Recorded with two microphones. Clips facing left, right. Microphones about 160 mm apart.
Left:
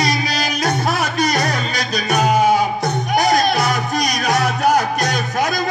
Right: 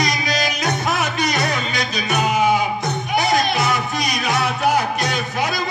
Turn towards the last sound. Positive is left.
turn(degrees=45)  # may be behind; listen again after turning